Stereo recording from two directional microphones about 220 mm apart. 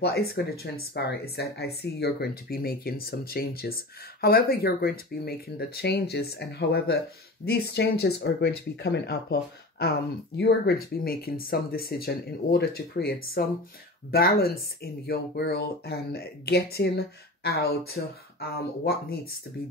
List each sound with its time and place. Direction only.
0.0 s speech: 45° left (ahead or behind)